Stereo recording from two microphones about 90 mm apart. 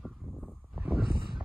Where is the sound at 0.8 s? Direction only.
10° right (ahead or behind).